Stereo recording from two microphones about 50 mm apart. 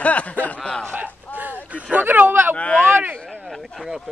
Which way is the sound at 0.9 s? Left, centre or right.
Right.